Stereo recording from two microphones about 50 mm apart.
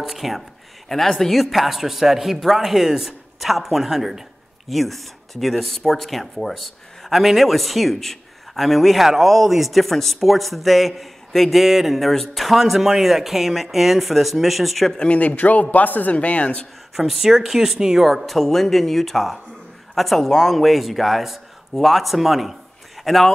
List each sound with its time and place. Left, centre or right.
0.0 s speech: centre
15.0 s speech: left
16.9 s a man's voice: centre